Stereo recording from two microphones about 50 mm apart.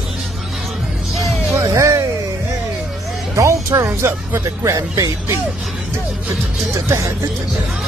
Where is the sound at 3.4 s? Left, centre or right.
Right.